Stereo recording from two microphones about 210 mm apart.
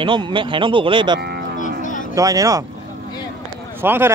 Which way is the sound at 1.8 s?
35° left (ahead or behind).